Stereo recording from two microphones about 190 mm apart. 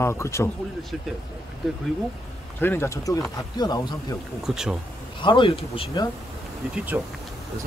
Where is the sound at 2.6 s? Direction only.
10° left (ahead or behind).